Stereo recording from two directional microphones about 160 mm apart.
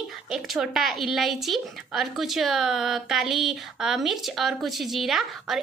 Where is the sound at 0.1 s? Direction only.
Centre (ahead or behind).